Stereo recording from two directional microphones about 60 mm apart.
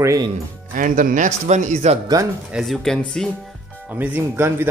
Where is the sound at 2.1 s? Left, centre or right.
Right.